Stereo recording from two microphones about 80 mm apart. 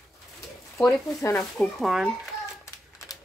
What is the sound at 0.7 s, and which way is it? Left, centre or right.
Speech, centre.